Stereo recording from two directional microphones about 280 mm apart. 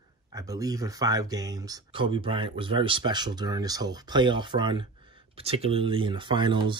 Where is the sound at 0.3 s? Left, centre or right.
Centre.